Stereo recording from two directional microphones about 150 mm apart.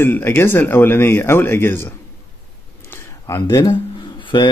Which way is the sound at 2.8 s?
20° left (ahead or behind).